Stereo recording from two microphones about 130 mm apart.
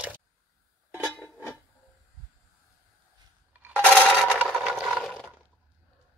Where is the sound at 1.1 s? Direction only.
20° left (ahead or behind).